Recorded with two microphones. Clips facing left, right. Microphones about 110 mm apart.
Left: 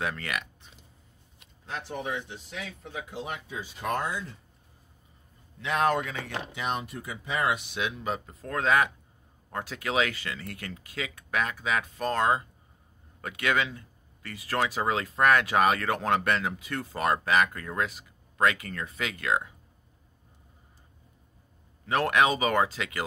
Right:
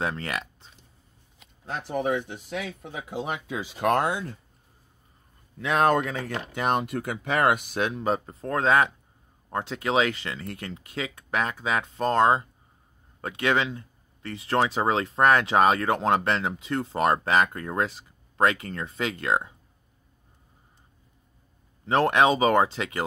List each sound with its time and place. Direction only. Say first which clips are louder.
0.0 s speech: right 3 dB; 30° right (ahead or behind)
1.7 s speech: right 7 dB; 45° right (ahead or behind); by 4.4 s 65° right (ahead or behind)
5.6 s speech: right 4 dB; 50° right (ahead or behind)
6.5 s speech: right 8 dB; 55° right (ahead or behind); by 19.5 s 30° right (ahead or behind)
21.8 s speech: right 4 dB; 30° right (ahead or behind)